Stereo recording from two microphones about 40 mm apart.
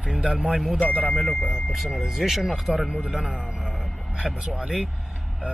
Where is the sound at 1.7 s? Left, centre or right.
Centre.